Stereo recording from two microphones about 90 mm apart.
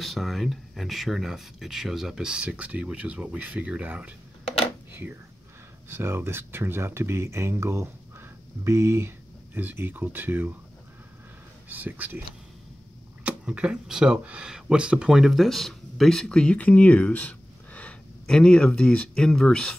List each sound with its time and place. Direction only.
0.0 s speech: centre (ahead or behind)
5.9 s speech: 25° right (ahead or behind)
11.7 s speech: 20° right (ahead or behind)
13.2 s speech: 10° right (ahead or behind); by 19.8 s 10° left (ahead or behind)